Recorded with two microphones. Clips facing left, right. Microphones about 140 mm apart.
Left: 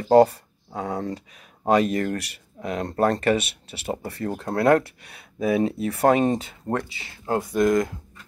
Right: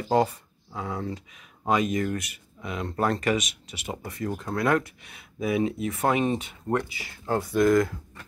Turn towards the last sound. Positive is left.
turn(degrees=20)  # may be behind; listen again after turning